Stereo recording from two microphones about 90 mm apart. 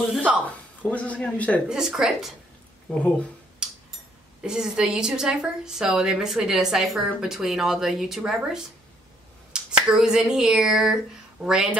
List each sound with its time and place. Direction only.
0.2 s speech: 15° right (ahead or behind)
0.5 s speech: 15° left (ahead or behind)
1.7 s speech: 5° right (ahead or behind)
2.9 s speech: 15° left (ahead or behind)
3.6 s tick-tock: 10° right (ahead or behind)
4.4 s a woman's voice: 5° right (ahead or behind)